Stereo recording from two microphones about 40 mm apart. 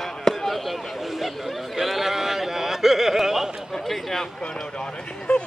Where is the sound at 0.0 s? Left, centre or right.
Centre.